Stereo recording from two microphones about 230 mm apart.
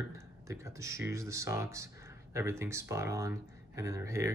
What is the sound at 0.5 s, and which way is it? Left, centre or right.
Speech, centre.